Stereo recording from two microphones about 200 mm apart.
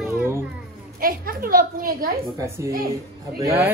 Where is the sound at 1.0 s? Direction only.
45° right (ahead or behind).